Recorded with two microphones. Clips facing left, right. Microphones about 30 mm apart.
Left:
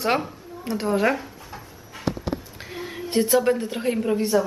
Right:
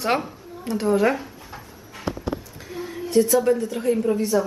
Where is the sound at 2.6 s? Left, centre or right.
Left.